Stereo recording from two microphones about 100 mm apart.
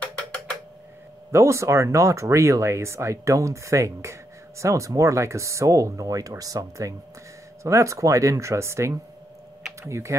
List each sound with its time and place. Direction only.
1.3 s speech: 30° right (ahead or behind)